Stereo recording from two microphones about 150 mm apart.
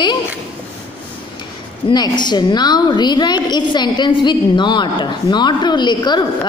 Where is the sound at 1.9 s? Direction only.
30° left (ahead or behind).